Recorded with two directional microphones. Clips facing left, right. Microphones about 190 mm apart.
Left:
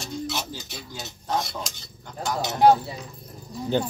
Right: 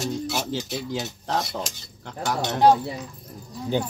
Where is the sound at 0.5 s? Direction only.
90° right.